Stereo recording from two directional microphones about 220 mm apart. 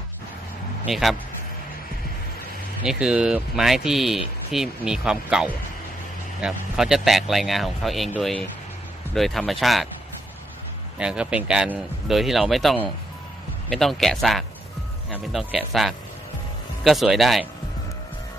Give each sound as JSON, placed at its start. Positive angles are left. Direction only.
{"t": 0.8, "sound": "speech", "side_deg": 0}
{"t": 2.8, "sound": "speech", "side_deg": -5}
{"t": 11.0, "sound": "speech", "side_deg": -5}